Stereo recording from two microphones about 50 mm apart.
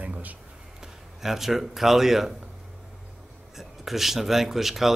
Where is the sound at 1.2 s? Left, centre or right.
Centre.